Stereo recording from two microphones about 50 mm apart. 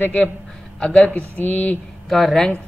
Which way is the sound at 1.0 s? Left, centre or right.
Left.